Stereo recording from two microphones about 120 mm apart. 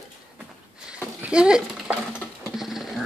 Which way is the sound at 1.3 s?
10° right (ahead or behind).